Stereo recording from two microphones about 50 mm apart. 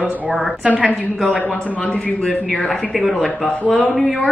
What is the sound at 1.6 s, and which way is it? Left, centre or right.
Speech, left.